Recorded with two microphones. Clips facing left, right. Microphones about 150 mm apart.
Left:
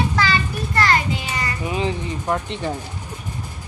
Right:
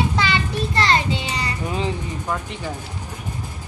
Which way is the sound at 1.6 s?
15° left (ahead or behind).